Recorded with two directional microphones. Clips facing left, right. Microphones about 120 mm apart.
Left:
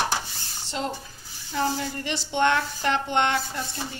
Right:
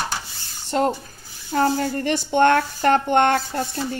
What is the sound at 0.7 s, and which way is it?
Speech, 50° right (ahead or behind).